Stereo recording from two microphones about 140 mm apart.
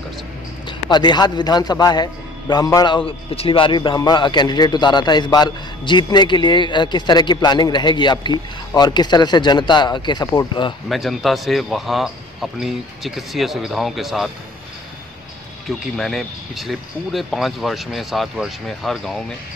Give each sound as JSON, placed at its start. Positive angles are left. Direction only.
{"t": 0.7, "sound": "a man's voice", "side_deg": 30}
{"t": 10.9, "sound": "speech", "side_deg": 0}
{"t": 16.0, "sound": "speech", "side_deg": 0}